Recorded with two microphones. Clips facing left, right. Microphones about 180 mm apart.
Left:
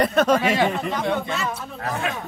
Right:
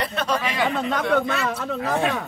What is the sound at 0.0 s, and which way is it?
Speech, 45° left (ahead or behind).